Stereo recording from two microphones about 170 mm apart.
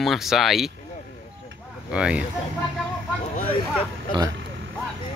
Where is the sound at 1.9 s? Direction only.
5° right (ahead or behind).